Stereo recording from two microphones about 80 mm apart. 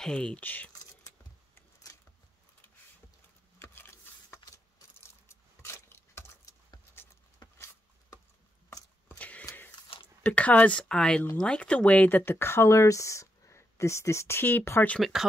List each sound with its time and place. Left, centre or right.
0.0 s speech: centre
3.5 s a sound: left
9.2 s a sound: centre
10.2 s speech: centre
12.3 s speech: left
15.0 s speech: centre